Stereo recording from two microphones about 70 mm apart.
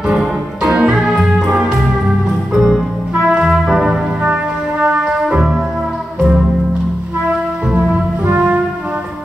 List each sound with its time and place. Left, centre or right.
0.7 s music: centre
3.3 s brass instrument: centre
4.8 s music: centre
5.1 s music: centre